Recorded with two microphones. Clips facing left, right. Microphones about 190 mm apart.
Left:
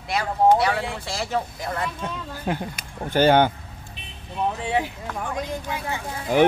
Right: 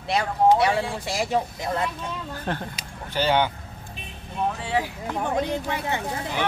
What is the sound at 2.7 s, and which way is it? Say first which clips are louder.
Speech: left 7 dB; 50° left (ahead or behind).